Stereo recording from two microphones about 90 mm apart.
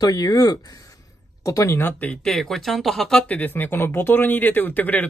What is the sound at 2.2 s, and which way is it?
Speech, 5° left (ahead or behind).